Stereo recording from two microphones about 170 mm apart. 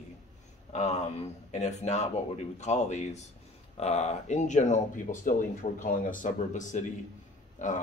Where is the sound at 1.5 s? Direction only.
40° left (ahead or behind).